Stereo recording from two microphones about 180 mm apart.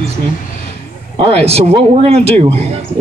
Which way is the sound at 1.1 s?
35° right (ahead or behind).